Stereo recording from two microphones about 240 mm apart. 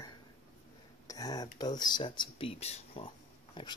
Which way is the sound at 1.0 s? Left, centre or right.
Centre.